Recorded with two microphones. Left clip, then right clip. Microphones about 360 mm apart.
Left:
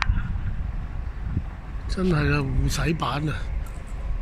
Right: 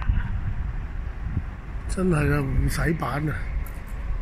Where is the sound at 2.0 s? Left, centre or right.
Centre.